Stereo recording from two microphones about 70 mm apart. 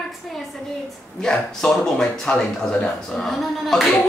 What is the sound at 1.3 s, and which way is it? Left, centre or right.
A man's voice, centre.